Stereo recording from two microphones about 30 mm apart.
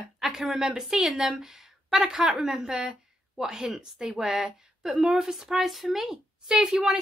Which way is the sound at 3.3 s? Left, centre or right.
Right.